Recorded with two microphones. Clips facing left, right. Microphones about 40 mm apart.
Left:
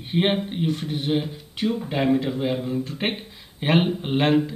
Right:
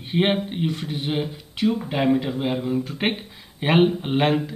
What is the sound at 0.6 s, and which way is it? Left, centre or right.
Speech, right.